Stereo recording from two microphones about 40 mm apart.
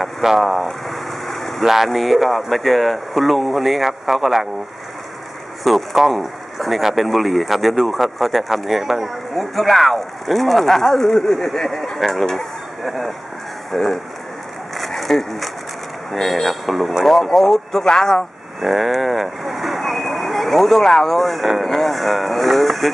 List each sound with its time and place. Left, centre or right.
0.0 s vehicle: centre
1.6 s speech: centre
5.6 s speech: centre
14.8 s a sound: centre
16.1 s speech: centre
17.7 s speech: centre
18.6 s speech: centre